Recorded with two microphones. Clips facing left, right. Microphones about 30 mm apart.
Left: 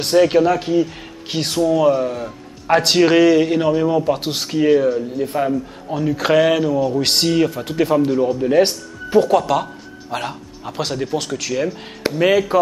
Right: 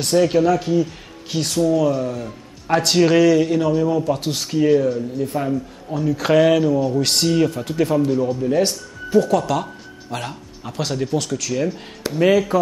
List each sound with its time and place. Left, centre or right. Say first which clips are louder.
0.0 s a man's voice: left 2 dB; left
7.0 s a man's voice: left 1 dB; left
9.5 s speech: left 3 dB; centre